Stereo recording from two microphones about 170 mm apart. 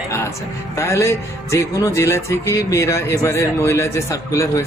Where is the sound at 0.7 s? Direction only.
15° left (ahead or behind).